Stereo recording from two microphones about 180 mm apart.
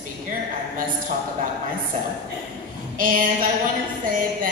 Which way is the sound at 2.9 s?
50° right (ahead or behind).